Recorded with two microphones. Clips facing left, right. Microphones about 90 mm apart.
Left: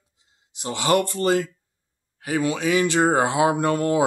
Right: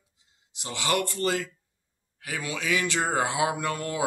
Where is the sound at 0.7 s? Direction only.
35° left (ahead or behind).